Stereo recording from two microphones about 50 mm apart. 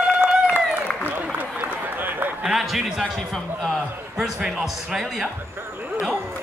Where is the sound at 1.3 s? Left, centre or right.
Right.